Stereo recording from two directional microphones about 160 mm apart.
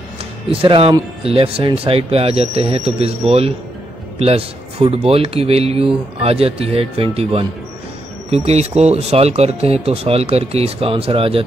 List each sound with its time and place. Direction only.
0.5 s speech: 35° right (ahead or behind)